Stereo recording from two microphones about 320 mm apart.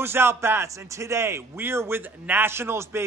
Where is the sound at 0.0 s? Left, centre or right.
Centre.